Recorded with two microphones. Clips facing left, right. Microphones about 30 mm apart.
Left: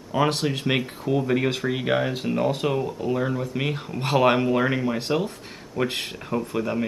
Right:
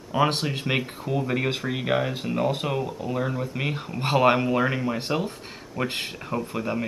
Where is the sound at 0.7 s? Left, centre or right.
Centre.